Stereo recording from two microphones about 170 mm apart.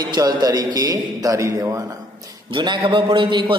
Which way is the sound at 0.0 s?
25° right (ahead or behind).